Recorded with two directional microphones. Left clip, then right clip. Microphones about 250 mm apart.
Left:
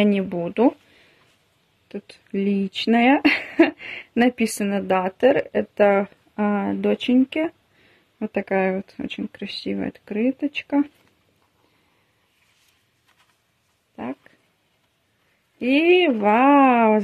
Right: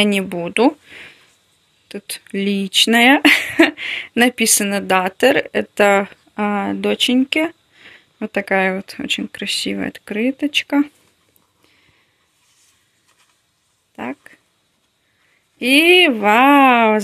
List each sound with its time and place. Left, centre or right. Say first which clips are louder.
0.0 s speech: right 4 dB; centre
13.9 s a sound: right 4 dB; centre
15.6 s speech: right 6 dB; centre